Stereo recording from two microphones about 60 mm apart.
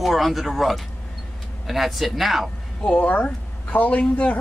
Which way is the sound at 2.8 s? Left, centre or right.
Left.